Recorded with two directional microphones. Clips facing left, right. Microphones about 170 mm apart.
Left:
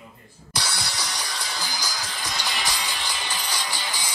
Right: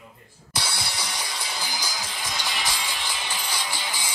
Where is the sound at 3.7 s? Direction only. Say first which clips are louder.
Even; 20° right (ahead or behind).